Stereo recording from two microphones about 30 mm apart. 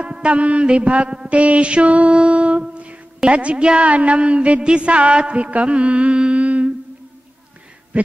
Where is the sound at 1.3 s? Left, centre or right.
Right.